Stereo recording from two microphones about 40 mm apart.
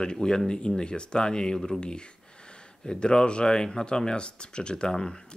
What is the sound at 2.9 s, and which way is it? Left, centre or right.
Speech, left.